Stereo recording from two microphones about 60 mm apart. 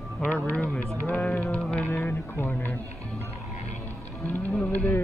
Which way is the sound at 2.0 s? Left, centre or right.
Left.